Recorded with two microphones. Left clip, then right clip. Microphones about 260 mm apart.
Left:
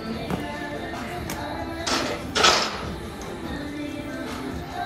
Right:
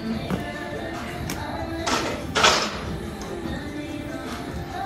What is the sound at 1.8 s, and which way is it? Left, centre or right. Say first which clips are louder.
Music: right 1 dB; right.